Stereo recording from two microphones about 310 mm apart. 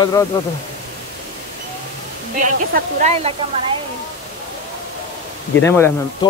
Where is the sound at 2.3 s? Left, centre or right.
Right.